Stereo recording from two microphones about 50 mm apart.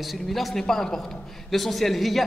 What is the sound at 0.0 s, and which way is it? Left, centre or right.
A man's voice, centre.